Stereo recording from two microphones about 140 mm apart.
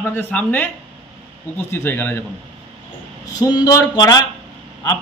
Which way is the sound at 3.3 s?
30° left (ahead or behind).